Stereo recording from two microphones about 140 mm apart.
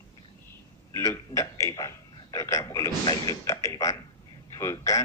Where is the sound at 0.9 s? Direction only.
20° left (ahead or behind).